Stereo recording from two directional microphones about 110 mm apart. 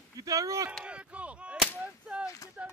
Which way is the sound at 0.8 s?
10° right (ahead or behind).